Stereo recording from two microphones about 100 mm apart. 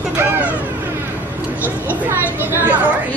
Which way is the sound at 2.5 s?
20° right (ahead or behind).